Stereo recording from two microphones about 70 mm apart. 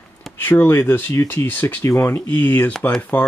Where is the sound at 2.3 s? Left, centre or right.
Left.